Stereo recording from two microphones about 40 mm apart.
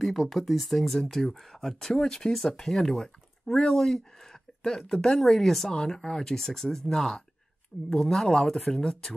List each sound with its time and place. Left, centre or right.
0.1 s speech: centre